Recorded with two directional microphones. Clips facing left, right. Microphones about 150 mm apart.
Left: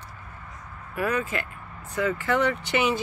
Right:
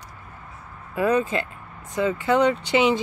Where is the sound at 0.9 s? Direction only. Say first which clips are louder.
Right 6 dB; 25° right (ahead or behind).